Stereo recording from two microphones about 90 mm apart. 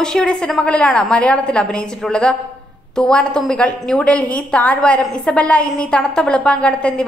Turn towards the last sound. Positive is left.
turn(degrees=10)  # may be behind; listen again after turning